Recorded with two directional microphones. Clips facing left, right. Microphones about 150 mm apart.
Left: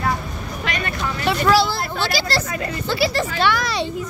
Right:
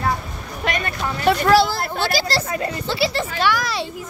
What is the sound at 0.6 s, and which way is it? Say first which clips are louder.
Speech: right 2 dB; 45° right (ahead or behind).